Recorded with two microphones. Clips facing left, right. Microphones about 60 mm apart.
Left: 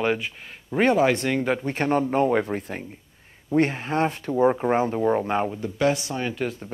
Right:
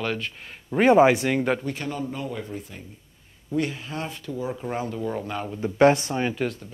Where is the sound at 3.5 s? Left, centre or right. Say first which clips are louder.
Left 6 dB; left.